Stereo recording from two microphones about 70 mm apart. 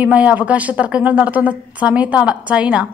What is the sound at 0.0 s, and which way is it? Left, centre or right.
A woman's voice, centre.